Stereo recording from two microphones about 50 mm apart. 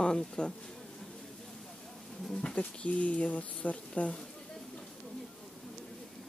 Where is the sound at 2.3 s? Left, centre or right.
Centre.